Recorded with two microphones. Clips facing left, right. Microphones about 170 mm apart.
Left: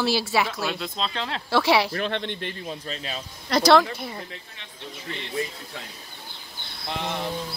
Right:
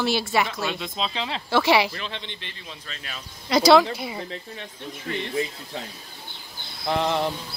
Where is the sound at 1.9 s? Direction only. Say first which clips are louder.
Left 8 dB; 55° left (ahead or behind).